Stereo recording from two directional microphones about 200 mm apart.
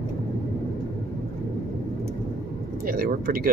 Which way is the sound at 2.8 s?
45° right (ahead or behind).